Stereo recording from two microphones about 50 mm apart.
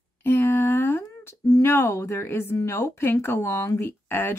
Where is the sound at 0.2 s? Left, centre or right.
Left.